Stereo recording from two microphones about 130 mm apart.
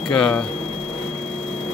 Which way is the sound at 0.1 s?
5° left (ahead or behind).